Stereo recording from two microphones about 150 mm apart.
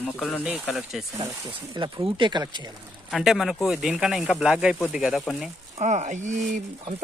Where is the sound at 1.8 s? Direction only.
35° right (ahead or behind).